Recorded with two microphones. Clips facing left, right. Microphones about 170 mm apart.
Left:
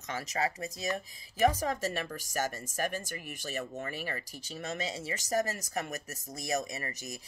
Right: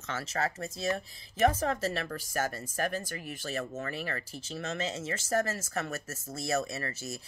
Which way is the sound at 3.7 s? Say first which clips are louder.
Right 2 dB; 15° left (ahead or behind).